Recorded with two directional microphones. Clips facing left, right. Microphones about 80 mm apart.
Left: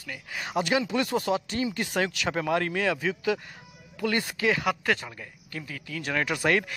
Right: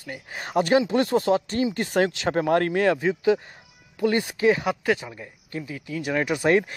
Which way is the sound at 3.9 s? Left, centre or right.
Right.